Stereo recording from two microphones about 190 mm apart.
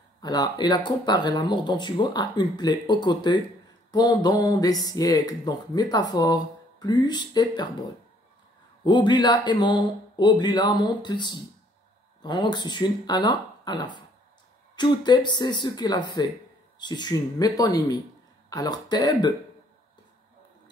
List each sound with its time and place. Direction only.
0.2 s speech: 20° left (ahead or behind)
8.8 s speech: 25° left (ahead or behind)